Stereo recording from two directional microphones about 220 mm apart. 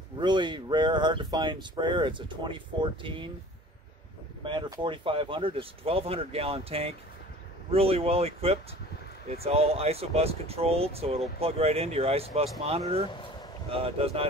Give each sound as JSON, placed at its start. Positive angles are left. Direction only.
{"t": 0.2, "sound": "speech", "side_deg": -20}
{"t": 4.5, "sound": "speech", "side_deg": -20}